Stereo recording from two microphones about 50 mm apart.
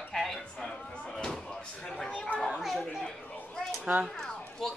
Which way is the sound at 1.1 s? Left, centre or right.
Centre.